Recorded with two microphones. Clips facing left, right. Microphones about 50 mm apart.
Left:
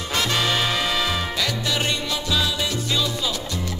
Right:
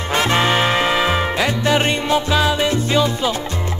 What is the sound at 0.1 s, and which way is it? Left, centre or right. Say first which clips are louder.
Music: right 6 dB; right.